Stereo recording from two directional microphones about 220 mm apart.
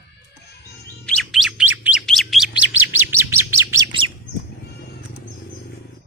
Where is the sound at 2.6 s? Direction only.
55° left (ahead or behind).